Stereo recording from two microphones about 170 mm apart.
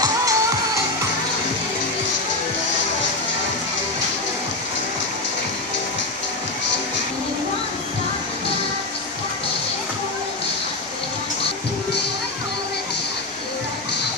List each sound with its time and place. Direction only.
0.0 s music: 20° right (ahead or behind)